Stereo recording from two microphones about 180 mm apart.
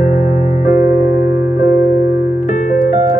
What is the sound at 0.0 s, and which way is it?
Music, 40° left (ahead or behind).